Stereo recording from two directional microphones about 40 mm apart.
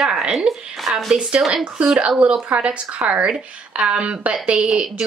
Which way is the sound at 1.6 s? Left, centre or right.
Right.